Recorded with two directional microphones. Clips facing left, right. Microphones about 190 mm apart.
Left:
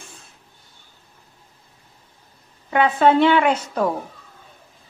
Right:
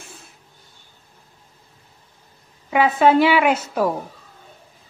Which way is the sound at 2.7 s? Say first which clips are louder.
Right 1 dB; 5° right (ahead or behind).